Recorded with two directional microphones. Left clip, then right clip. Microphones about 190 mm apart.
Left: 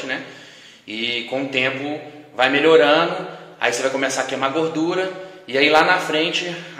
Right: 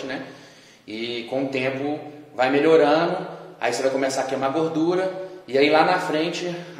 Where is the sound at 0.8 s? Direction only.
5° left (ahead or behind).